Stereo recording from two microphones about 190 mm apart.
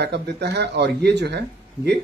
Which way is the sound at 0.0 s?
60° right (ahead or behind).